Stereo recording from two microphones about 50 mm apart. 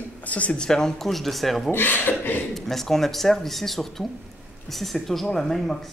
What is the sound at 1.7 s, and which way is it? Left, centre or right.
Speech, left.